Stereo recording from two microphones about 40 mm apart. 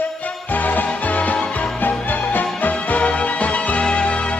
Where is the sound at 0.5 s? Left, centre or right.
Left.